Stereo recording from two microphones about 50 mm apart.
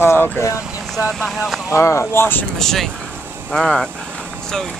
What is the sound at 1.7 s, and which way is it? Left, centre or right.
Speech, left.